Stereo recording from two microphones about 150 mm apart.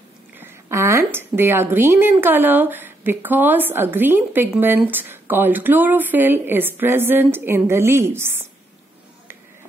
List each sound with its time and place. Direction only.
0.4 s speech: 15° right (ahead or behind)